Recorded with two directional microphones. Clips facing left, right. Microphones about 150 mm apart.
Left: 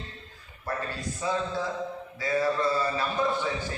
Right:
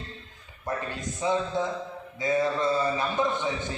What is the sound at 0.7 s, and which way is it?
A man's voice, 20° right (ahead or behind).